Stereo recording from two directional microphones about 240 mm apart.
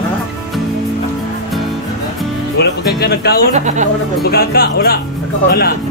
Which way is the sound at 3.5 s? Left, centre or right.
Right.